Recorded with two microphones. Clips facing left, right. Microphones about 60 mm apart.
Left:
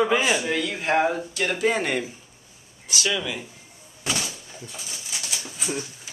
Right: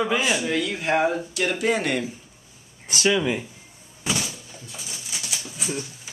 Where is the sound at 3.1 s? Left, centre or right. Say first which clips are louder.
Right 7 dB; right.